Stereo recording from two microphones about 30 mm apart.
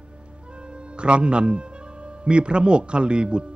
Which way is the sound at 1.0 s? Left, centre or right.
Right.